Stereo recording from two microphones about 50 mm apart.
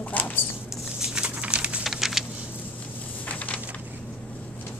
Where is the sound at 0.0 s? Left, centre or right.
Left.